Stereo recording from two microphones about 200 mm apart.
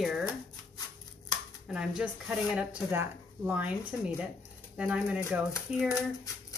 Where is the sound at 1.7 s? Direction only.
5° right (ahead or behind).